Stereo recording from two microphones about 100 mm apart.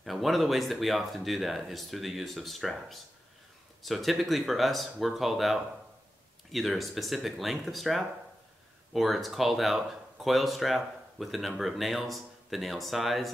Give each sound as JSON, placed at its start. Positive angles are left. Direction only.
{"t": 0.0, "sound": "speech", "side_deg": 0}